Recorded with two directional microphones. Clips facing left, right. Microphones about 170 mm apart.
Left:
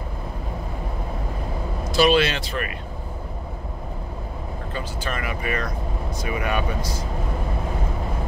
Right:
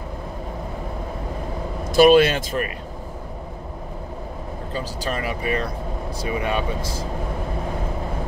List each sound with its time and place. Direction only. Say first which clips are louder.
1.9 s speech: right 5 dB; 50° right (ahead or behind)
4.7 s speech: right 3 dB; 35° right (ahead or behind)